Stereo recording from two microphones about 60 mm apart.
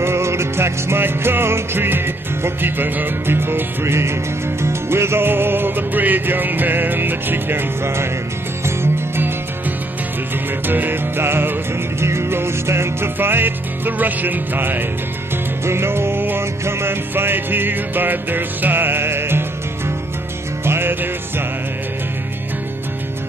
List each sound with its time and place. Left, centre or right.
0.0 s music: right
10.7 s music: right
15.6 s music: right
20.6 s music: right